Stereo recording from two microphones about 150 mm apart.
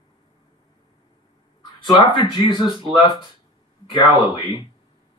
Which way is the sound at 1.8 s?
30° left (ahead or behind).